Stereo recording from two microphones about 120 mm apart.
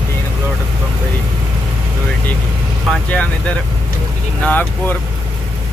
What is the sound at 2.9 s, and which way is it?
Vehicle, 10° left (ahead or behind).